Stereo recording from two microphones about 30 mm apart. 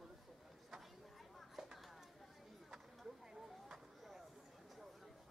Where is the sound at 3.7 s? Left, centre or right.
Centre.